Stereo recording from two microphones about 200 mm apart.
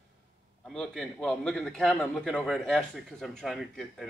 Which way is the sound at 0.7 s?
5° left (ahead or behind).